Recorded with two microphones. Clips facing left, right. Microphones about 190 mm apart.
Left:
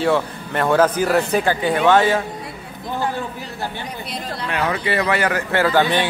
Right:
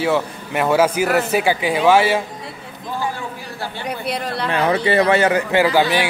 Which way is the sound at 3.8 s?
65° right (ahead or behind).